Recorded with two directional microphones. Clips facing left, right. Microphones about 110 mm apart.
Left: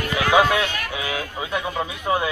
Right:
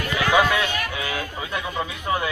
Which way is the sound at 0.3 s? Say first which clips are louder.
Left 2 dB; 15° left (ahead or behind).